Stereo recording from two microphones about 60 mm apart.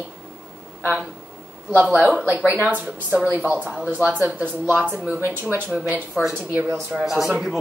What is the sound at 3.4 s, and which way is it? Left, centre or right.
Speech, right.